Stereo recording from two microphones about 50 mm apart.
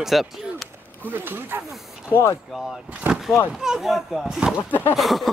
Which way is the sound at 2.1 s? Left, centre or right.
Left.